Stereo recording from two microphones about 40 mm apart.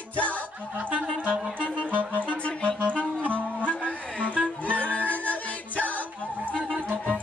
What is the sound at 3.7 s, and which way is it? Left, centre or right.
Music, left.